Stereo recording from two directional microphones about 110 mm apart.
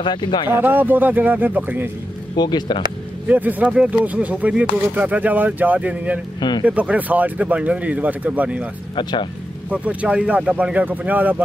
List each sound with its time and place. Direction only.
0.0 s speech: 45° left (ahead or behind)
0.5 s speech: 20° right (ahead or behind)
2.3 s speech: 40° left (ahead or behind)
3.3 s speech: 15° right (ahead or behind)
8.9 s speech: 45° left (ahead or behind)
9.7 s speech: 10° right (ahead or behind)